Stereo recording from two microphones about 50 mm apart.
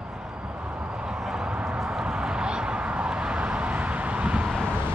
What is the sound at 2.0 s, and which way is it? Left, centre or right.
Vehicle, centre.